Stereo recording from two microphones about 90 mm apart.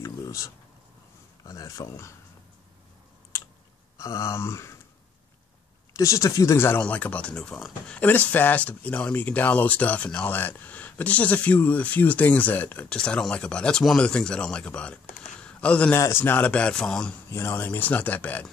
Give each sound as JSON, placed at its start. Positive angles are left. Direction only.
{"t": 0.0, "sound": "a sound", "side_deg": 35}
{"t": 1.4, "sound": "speech", "side_deg": 40}
{"t": 4.0, "sound": "speech", "side_deg": 30}
{"t": 5.9, "sound": "speech", "side_deg": 35}
{"t": 6.8, "sound": "speech", "side_deg": 15}
{"t": 8.0, "sound": "speech", "side_deg": 15}
{"t": 16.0, "sound": "speech", "side_deg": 30}
{"t": 17.3, "sound": "speech", "side_deg": 25}